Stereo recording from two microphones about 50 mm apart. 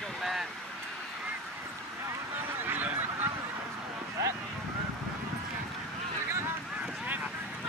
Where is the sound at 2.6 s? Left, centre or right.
Right.